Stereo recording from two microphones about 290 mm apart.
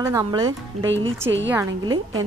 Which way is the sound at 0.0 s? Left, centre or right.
Centre.